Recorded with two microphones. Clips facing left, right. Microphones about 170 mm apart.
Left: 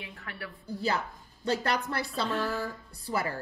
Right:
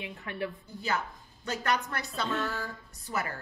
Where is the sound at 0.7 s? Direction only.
35° left (ahead or behind).